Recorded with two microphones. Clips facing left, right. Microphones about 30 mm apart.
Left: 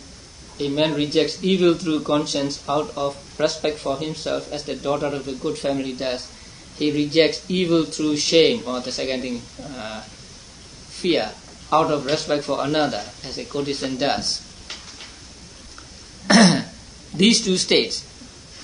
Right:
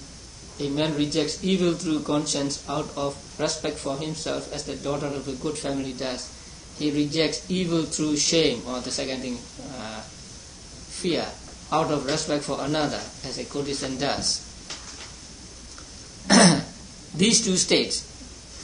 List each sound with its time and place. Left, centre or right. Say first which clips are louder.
0.6 s speech: left 4 dB; left
11.1 s speech: left 5 dB; left
11.7 s speech: left 5 dB; centre
16.3 s throat clearing: left 3 dB; left
17.2 s speech: left 4 dB; left